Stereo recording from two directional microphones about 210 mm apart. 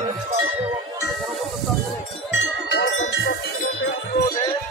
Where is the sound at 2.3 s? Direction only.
60° left (ahead or behind).